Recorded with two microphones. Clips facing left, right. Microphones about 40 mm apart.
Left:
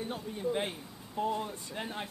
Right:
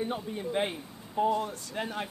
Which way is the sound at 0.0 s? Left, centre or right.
Centre.